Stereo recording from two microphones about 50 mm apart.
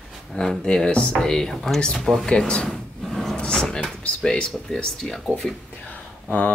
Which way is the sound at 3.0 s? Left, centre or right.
Centre.